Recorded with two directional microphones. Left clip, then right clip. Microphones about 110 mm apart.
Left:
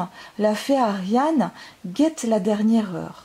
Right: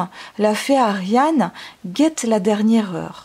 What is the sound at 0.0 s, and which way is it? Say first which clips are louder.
Speech: right 3 dB; 30° right (ahead or behind).